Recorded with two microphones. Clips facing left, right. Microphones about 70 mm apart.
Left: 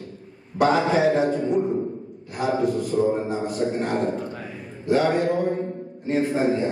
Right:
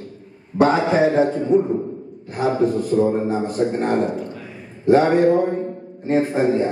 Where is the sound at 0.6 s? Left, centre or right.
Right.